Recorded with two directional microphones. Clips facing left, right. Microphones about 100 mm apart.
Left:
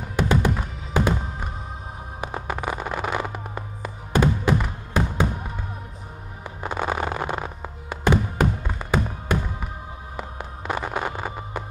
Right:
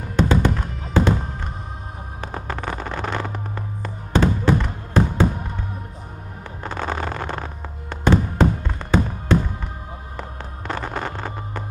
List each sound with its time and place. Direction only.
0.1 s fireworks: 10° left (ahead or behind)
6.6 s fireworks: 10° left (ahead or behind)
10.1 s music: 10° left (ahead or behind)